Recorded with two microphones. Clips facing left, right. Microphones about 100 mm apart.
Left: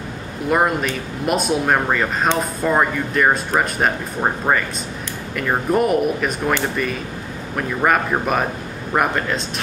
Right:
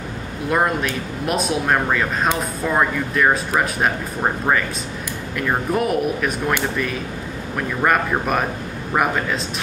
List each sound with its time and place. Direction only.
0.5 s speech: 5° left (ahead or behind)
5.7 s speech: centre (ahead or behind)